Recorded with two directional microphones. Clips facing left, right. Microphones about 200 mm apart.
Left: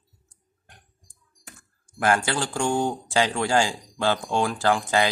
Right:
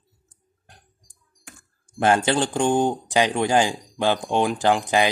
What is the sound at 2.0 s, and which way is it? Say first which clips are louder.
Speech: right 4 dB; 25° right (ahead or behind).